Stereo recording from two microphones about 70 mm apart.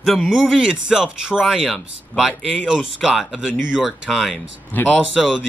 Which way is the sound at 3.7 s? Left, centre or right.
Centre.